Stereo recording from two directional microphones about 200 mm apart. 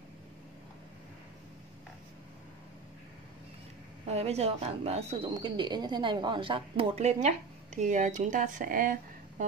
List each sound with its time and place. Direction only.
4.1 s speech: 30° right (ahead or behind)